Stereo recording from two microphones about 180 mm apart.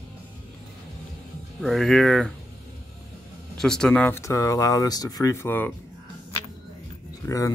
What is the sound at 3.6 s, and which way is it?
Speech, 5° left (ahead or behind).